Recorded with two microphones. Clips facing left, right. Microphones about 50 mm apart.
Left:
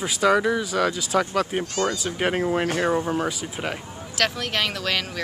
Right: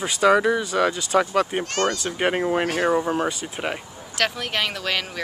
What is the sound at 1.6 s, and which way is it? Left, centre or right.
Speech, right.